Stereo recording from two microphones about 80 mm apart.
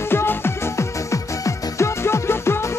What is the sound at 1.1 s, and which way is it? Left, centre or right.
Music, left.